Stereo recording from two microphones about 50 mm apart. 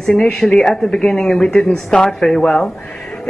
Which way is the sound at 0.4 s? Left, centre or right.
Centre.